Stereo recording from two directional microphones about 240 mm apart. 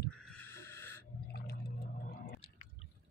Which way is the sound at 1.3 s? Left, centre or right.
Left.